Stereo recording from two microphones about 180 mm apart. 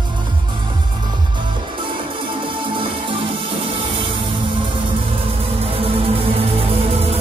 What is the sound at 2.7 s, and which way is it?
Music, 30° right (ahead or behind).